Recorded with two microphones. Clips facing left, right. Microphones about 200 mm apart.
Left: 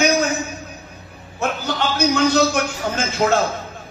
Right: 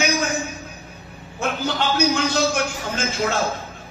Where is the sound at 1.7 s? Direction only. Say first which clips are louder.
Left 1 dB; 50° left (ahead or behind).